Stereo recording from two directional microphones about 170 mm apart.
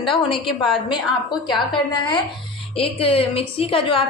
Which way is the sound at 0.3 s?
30° left (ahead or behind).